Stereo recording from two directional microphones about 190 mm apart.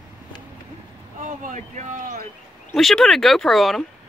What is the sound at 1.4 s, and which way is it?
Speech, 40° right (ahead or behind).